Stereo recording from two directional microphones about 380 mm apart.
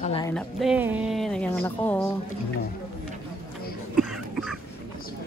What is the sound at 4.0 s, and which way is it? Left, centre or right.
Cough, centre.